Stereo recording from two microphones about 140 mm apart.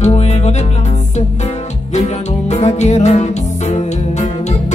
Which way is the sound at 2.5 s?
55° left (ahead or behind).